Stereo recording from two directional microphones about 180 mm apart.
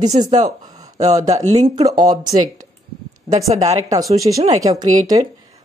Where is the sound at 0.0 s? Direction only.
40° right (ahead or behind).